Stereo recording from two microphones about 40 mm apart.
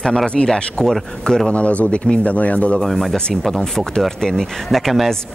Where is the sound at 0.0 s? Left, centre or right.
Centre.